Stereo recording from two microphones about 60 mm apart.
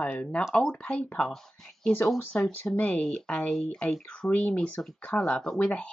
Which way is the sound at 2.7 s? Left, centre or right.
Left.